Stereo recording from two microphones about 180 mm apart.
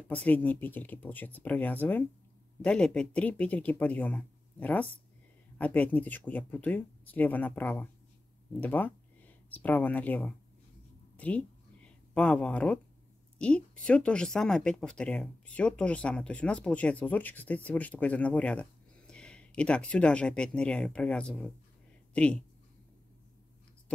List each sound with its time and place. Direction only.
0.1 s speech: 10° left (ahead or behind)
11.1 s a sound: 5° left (ahead or behind)
13.4 s speech: 5° left (ahead or behind)